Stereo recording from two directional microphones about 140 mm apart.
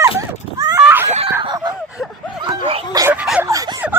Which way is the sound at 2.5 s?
40° right (ahead or behind).